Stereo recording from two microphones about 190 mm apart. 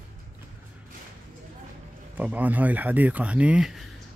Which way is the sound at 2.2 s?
10° right (ahead or behind).